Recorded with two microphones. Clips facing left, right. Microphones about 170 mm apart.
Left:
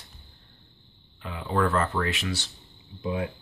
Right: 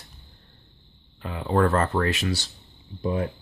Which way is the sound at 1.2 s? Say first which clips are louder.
Right 4 dB; 40° right (ahead or behind).